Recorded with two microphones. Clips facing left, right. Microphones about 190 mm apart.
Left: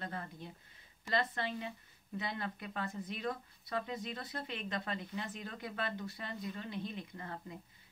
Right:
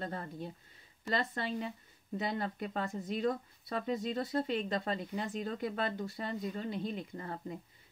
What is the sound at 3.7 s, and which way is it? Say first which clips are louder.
Speech: right 5 dB; 30° right (ahead or behind).